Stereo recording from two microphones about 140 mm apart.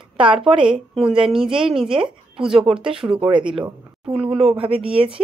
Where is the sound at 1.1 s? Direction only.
5° right (ahead or behind).